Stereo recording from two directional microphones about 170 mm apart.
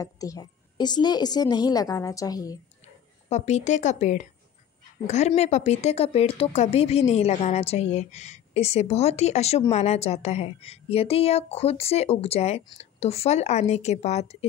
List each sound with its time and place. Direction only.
0.0 s a woman's voice: 20° left (ahead or behind)
2.8 s a woman's voice: 40° left (ahead or behind)